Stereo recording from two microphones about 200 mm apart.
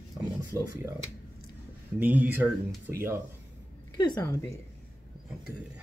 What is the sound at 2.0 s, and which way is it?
Speech, 10° right (ahead or behind).